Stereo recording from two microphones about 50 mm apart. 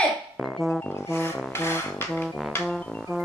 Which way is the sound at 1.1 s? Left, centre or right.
Left.